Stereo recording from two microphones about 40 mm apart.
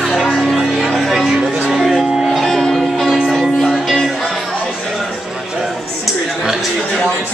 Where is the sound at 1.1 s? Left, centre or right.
Centre.